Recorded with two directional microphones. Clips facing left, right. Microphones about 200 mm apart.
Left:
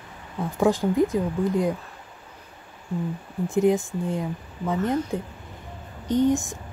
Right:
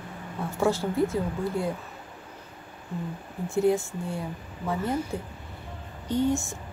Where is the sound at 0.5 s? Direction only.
15° left (ahead or behind).